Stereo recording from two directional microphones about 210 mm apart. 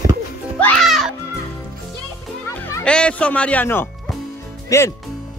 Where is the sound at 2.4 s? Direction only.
10° left (ahead or behind).